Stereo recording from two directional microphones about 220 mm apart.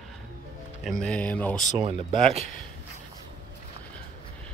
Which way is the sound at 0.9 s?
5° left (ahead or behind).